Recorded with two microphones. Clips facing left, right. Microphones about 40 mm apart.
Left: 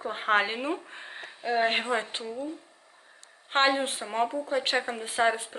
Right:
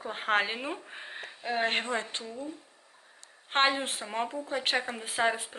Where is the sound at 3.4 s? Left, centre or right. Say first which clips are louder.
Left 2 dB; centre.